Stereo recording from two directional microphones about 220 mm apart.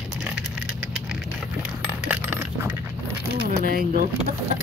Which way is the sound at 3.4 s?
45° right (ahead or behind).